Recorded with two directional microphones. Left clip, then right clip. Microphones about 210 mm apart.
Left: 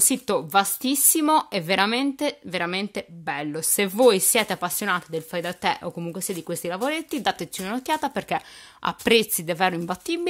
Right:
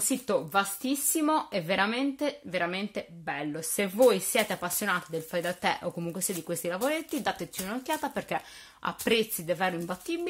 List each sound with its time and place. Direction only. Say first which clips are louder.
0.1 s speech: left 4 dB; 50° left (ahead or behind)